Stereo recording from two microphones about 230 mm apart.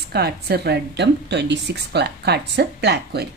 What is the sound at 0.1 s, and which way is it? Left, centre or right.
A woman's voice, right.